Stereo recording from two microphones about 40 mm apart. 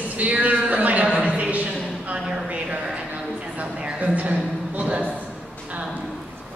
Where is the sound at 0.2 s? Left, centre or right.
Right.